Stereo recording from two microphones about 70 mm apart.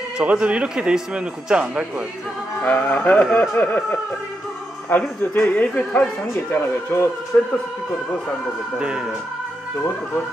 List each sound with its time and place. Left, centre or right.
0.2 s a man's voice: centre
2.6 s speech: left
4.9 s speech: left
5.5 s speech: left
8.7 s a man's voice: centre